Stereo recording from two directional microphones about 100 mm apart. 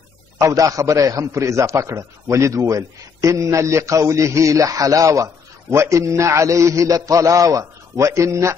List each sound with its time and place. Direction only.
0.4 s a man's voice: 35° right (ahead or behind)